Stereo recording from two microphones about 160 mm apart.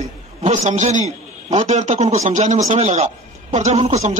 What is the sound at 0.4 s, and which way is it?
A man's voice, 50° right (ahead or behind).